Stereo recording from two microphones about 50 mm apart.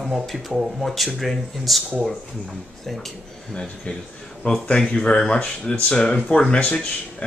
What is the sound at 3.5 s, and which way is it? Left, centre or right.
Speech, centre.